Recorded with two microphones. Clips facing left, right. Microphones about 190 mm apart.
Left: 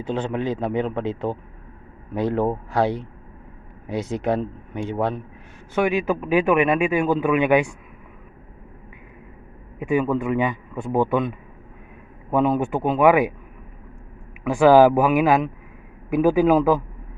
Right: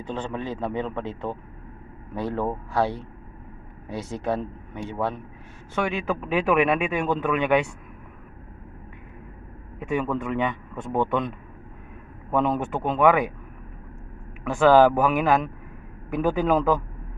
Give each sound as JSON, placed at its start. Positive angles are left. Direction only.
{"t": 0.3, "sound": "a man's voice", "side_deg": 15}
{"t": 5.8, "sound": "speech", "side_deg": 5}
{"t": 9.8, "sound": "a man's voice", "side_deg": 5}
{"t": 14.4, "sound": "a man's voice", "side_deg": 10}